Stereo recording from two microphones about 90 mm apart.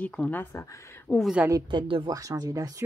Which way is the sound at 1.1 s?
10° left (ahead or behind).